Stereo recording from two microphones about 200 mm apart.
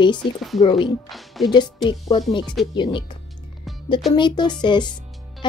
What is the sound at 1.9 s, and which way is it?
Speech, 25° left (ahead or behind).